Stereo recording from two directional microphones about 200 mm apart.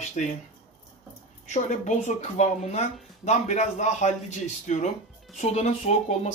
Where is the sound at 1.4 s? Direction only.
35° left (ahead or behind).